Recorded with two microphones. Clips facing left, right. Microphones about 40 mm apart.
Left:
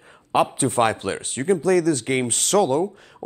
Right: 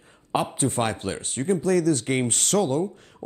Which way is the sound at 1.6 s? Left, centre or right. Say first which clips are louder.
Left 2 dB; left.